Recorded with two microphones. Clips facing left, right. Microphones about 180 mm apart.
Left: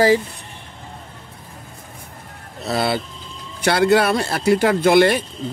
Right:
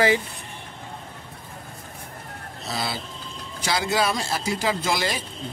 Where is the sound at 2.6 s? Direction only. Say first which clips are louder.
Left 9 dB; 60° left (ahead or behind).